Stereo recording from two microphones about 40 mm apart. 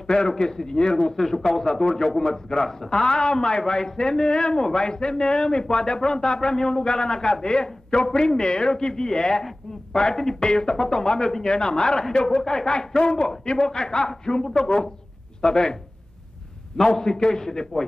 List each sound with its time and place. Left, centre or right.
0.0 s a man's voice: centre